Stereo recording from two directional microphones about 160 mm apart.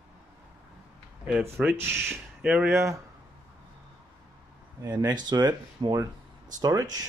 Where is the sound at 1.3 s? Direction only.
Centre (ahead or behind).